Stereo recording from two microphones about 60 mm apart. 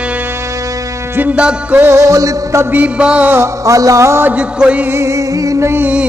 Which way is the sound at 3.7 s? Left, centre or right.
Right.